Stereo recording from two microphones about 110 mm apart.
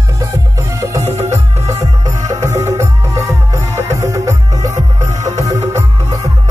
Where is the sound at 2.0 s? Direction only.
30° right (ahead or behind).